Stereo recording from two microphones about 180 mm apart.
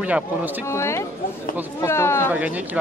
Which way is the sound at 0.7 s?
15° left (ahead or behind).